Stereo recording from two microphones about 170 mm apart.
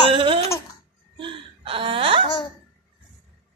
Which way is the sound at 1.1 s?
30° right (ahead or behind).